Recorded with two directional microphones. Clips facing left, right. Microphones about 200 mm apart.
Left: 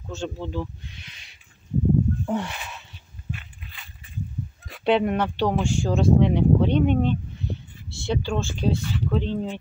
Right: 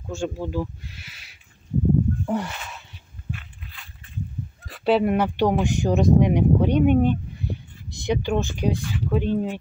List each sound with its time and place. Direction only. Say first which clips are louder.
0.1 s speech: right 3 dB; 10° right (ahead or behind)
2.2 s crow: right 1 dB; centre (ahead or behind)
4.6 s speech: right 1 dB; centre (ahead or behind)
7.4 s heart sounds: right 2 dB; 10° right (ahead or behind)
7.9 s speech: right 3 dB; 15° right (ahead or behind)